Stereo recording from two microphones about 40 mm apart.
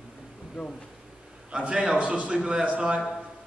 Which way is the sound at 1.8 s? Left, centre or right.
Right.